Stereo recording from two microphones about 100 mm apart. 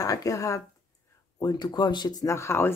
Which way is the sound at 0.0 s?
35° left (ahead or behind).